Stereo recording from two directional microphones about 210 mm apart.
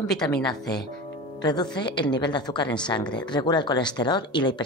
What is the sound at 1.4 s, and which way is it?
Speech, 20° left (ahead or behind).